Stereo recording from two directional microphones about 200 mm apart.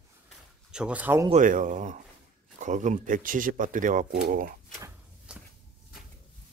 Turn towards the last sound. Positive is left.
turn(degrees=-5)  # may be behind; listen again after turning